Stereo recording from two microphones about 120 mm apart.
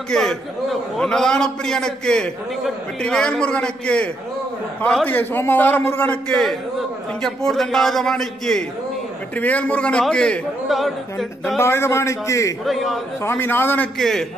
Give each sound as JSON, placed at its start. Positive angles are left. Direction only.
{"t": 0.1, "sound": "a man's voice", "side_deg": 5}
{"t": 11.5, "sound": "a man's voice", "side_deg": 20}
{"t": 12.6, "sound": "a man's voice", "side_deg": 0}
{"t": 13.2, "sound": "a man's voice", "side_deg": 20}
{"t": 13.9, "sound": "a man's voice", "side_deg": 5}